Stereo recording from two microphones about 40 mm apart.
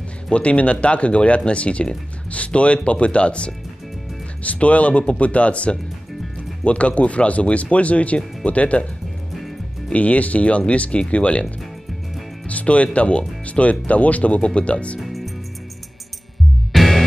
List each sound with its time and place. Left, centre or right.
0.3 s speech: left
9.9 s speech: left
12.4 s speech: left
15.0 s music: centre
16.7 s music: centre